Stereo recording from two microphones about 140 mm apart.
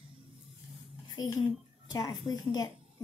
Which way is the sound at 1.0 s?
30° left (ahead or behind).